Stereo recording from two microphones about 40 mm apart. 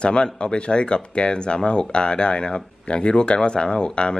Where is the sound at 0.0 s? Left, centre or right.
Left.